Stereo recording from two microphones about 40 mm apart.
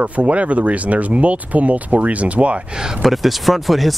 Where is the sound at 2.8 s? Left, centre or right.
Centre.